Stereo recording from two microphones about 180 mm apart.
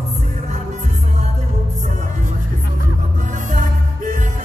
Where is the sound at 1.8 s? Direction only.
40° right (ahead or behind).